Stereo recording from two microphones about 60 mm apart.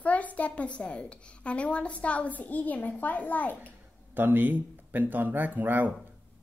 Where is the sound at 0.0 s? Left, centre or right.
Left.